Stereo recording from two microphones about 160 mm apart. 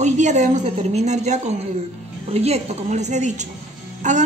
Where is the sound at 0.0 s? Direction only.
50° right (ahead or behind).